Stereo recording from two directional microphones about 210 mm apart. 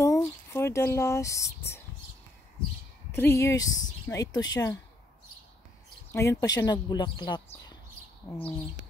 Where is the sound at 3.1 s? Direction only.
10° left (ahead or behind).